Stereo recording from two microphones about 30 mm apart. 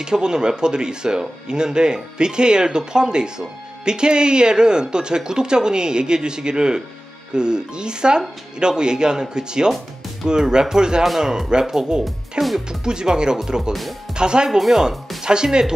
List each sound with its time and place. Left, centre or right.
0.0 s speech: right
12.0 s speech: centre
12.8 s speech: right